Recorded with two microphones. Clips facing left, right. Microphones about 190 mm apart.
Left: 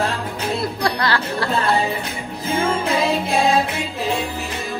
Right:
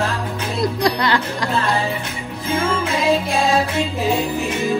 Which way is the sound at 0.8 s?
15° right (ahead or behind).